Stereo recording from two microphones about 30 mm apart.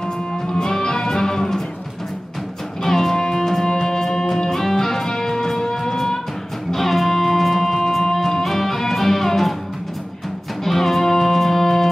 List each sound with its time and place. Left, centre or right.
0.3 s music: left
2.8 s music: centre
10.6 s music: centre